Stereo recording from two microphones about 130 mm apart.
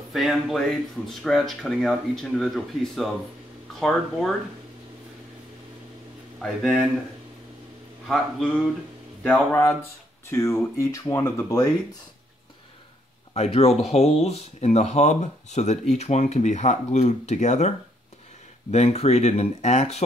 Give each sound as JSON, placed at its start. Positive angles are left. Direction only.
{"t": 0.1, "sound": "speech", "side_deg": 0}
{"t": 6.4, "sound": "speech", "side_deg": 5}
{"t": 8.1, "sound": "speech", "side_deg": 5}
{"t": 10.3, "sound": "speech", "side_deg": 20}
{"t": 13.3, "sound": "speech", "side_deg": 50}